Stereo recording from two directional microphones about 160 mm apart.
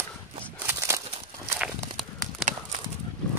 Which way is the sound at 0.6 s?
15° right (ahead or behind).